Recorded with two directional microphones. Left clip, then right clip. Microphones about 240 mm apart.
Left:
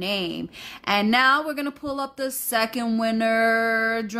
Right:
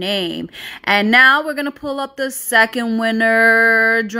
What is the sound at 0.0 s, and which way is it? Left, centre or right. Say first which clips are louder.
A woman's voice: right 6 dB; centre.